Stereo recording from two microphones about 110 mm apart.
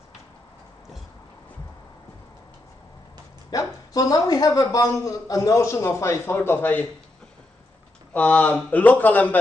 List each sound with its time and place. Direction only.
3.4 s speech: 35° left (ahead or behind); by 6.9 s 15° left (ahead or behind)
8.1 s speech: 10° left (ahead or behind)